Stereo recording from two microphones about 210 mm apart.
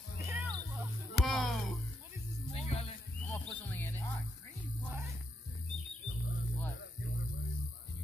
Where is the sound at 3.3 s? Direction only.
10° left (ahead or behind).